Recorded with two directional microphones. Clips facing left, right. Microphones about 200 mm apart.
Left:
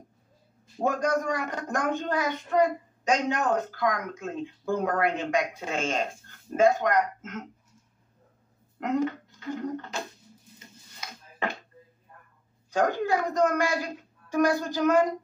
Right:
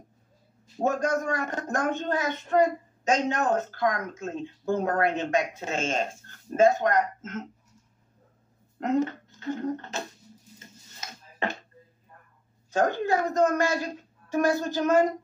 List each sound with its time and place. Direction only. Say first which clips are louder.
0.8 s speech: even; 25° right (ahead or behind)
8.8 s speech: right 1 dB; 25° right (ahead or behind)
12.7 s speech: right 1 dB; 25° right (ahead or behind)